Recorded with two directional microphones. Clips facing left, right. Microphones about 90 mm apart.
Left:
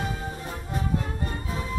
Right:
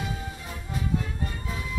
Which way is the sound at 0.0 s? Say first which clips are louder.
Left 3 dB; 40° left (ahead or behind).